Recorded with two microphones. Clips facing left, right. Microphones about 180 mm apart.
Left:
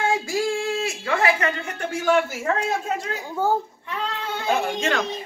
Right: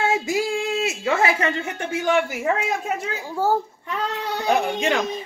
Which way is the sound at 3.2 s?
5° right (ahead or behind).